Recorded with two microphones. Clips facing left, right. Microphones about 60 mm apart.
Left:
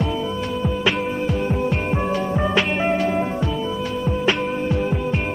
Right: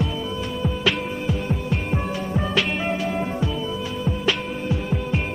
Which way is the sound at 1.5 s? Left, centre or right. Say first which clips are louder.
Left 5 dB; left.